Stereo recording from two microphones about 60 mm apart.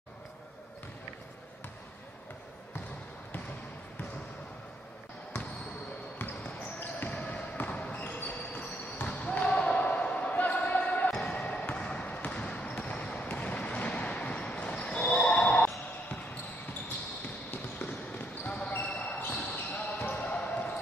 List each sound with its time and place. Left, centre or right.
6.1 s basketball bounce: left
17.5 s basketball bounce: left